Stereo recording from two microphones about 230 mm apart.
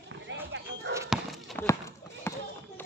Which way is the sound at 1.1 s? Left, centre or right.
Centre.